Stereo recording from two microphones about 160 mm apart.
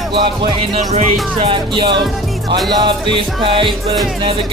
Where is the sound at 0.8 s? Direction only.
45° right (ahead or behind).